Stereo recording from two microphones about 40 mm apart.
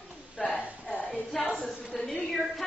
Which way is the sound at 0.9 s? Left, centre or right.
Left.